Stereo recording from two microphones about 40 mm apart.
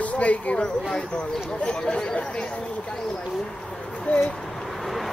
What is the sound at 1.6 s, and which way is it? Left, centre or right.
Speech, left.